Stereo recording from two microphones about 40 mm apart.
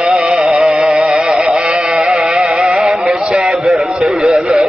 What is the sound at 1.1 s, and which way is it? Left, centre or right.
Music, centre.